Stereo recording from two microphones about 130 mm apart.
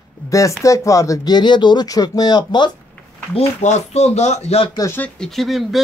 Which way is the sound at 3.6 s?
60° left (ahead or behind).